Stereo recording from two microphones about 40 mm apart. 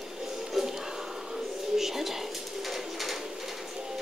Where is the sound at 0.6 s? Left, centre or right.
Centre.